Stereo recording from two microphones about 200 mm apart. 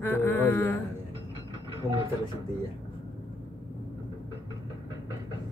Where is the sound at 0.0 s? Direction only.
10° left (ahead or behind).